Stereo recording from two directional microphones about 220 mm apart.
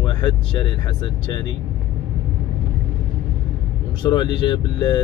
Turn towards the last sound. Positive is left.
turn(degrees=20)  # may be behind; listen again after turning